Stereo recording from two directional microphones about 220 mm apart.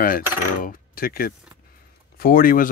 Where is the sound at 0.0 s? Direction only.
40° left (ahead or behind).